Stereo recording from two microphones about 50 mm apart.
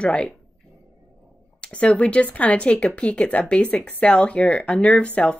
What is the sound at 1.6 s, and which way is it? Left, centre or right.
Speech, left.